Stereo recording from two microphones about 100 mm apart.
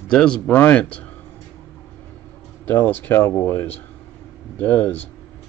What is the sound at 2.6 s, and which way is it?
Speech, 20° left (ahead or behind).